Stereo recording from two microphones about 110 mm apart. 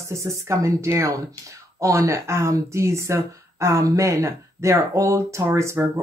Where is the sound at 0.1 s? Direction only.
25° right (ahead or behind).